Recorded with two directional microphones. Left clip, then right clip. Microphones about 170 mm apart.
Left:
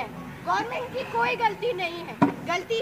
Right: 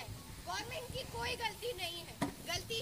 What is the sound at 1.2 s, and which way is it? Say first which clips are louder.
Speech: left 12 dB; 10° right (ahead or behind).